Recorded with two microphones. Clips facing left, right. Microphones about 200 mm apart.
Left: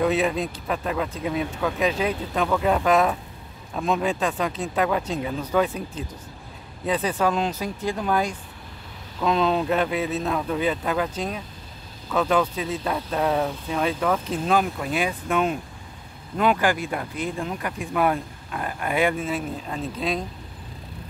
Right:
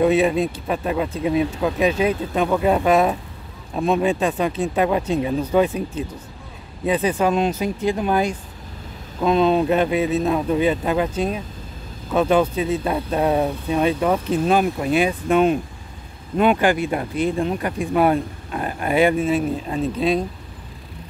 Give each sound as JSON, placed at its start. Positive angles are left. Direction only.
{"t": 0.0, "sound": "speech", "side_deg": -25}
{"t": 4.1, "sound": "speech", "side_deg": -15}
{"t": 6.9, "sound": "speech", "side_deg": -15}
{"t": 13.2, "sound": "speech", "side_deg": -15}